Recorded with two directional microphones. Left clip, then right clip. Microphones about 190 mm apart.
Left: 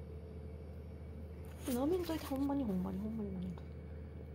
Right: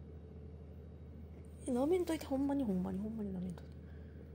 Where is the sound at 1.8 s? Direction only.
40° right (ahead or behind).